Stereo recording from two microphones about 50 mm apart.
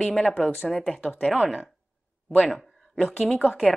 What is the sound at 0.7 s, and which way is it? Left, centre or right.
Speech, centre.